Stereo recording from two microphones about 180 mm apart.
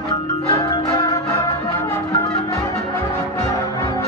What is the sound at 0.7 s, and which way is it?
Change ringing, 20° left (ahead or behind).